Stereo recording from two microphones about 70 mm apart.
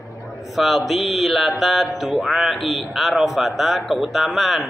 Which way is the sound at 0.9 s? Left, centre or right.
Centre.